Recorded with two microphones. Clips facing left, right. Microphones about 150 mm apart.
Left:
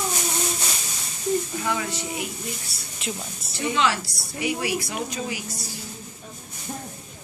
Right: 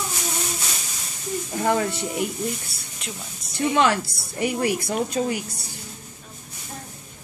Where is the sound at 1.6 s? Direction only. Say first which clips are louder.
Right 5 dB; 45° right (ahead or behind).